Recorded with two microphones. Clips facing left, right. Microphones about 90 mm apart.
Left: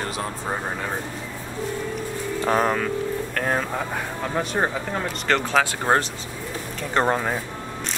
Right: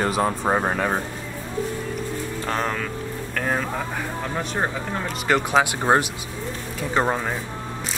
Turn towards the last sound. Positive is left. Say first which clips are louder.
# left 1 dB
turn(degrees=0)  # may be behind; listen again after turning